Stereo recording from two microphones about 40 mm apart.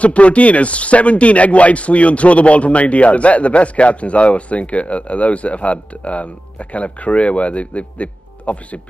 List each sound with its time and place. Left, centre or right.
0.0 s speech: left